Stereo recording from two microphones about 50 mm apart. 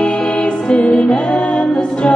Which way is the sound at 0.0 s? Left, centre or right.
Centre.